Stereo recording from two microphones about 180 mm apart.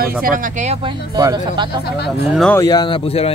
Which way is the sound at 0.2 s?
50° right (ahead or behind).